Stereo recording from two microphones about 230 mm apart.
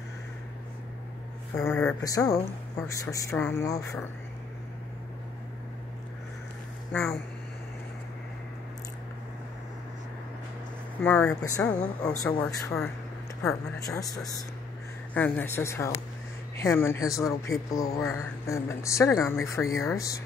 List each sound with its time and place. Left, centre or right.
1.5 s speech: centre
6.9 s speech: centre
11.0 s speech: centre
13.8 s speech: centre